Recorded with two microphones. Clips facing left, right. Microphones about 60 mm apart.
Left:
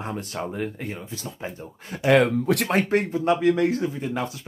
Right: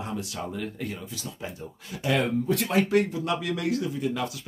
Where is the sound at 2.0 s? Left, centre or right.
Left.